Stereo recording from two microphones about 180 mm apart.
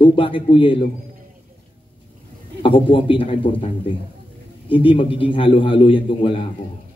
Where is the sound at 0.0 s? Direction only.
30° left (ahead or behind).